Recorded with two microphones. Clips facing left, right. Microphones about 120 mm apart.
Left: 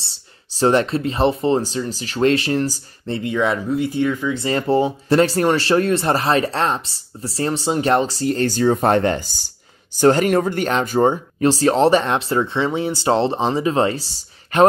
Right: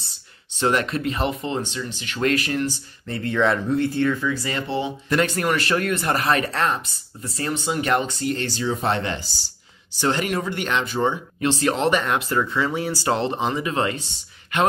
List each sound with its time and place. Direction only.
0.1 s speech: 35° left (ahead or behind)
3.2 s speech: 10° left (ahead or behind)
4.5 s speech: 40° left (ahead or behind)